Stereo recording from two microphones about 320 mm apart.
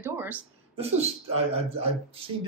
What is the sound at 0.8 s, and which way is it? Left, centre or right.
Speech, centre.